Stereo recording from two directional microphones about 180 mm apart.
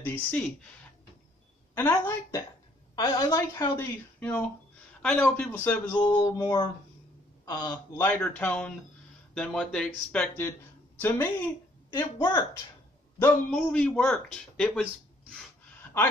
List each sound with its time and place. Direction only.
0.0 s a woman's voice: 10° left (ahead or behind)
1.8 s a woman's voice: 15° left (ahead or behind)
6.4 s speech: 30° left (ahead or behind)
8.1 s a woman's voice: 10° left (ahead or behind)
13.2 s a man's voice: 5° left (ahead or behind)